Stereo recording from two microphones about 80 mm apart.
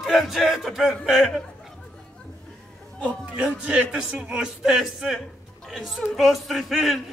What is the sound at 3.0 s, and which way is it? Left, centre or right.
A man's voice, centre.